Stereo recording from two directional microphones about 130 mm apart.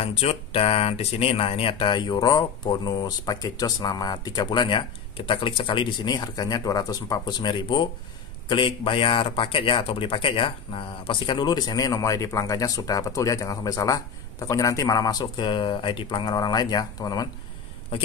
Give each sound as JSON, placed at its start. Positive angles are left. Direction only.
{"t": 0.0, "sound": "speech", "side_deg": 50}